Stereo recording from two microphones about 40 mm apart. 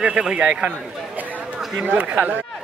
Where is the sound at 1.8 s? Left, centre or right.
Right.